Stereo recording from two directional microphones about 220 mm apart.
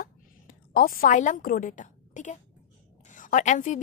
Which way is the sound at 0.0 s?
40° left (ahead or behind).